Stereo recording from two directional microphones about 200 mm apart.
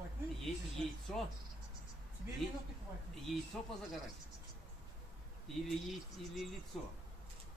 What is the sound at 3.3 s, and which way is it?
Speech, centre (ahead or behind).